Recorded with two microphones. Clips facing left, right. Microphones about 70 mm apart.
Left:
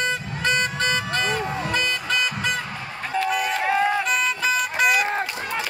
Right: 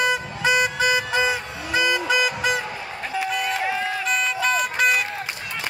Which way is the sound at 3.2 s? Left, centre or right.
Centre.